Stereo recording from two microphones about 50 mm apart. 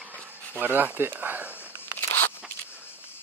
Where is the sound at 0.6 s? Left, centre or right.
Right.